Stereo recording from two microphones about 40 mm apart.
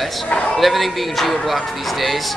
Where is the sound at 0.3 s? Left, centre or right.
Left.